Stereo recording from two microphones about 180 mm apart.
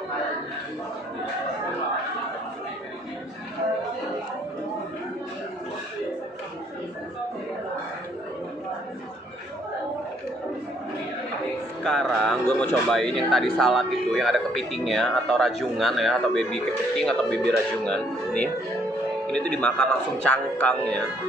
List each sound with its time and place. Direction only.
11.8 s speech: 5° left (ahead or behind)